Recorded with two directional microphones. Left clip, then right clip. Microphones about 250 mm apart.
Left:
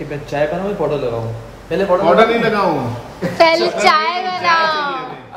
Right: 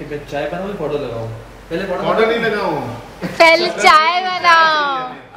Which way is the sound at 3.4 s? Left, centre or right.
Centre.